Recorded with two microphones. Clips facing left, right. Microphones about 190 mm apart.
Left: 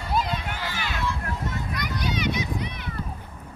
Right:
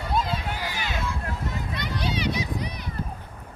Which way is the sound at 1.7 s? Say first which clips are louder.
Right 1 dB; 30° right (ahead or behind).